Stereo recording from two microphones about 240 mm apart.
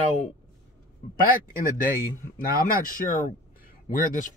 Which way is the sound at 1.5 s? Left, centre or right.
Left.